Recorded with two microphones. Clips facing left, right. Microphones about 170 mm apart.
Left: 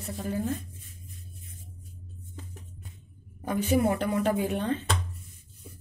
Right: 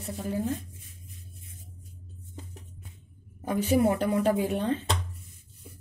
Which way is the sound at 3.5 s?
30° right (ahead or behind).